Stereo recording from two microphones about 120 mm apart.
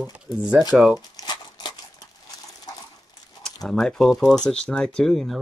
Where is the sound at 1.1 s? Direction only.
35° left (ahead or behind).